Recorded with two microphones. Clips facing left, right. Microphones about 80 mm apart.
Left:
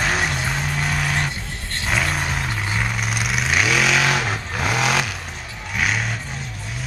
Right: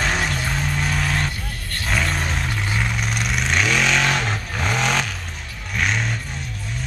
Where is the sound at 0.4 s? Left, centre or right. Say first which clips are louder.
Even; centre.